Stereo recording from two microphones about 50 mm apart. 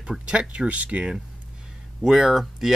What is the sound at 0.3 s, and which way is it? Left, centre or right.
Speech, right.